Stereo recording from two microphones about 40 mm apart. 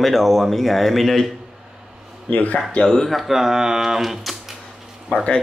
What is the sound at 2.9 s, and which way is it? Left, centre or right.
Speech, centre.